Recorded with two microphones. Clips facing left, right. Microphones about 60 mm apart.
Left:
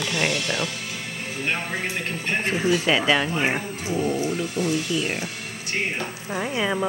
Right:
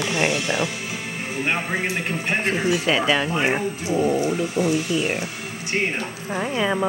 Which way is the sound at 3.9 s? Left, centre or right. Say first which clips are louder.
Right 3 dB; right.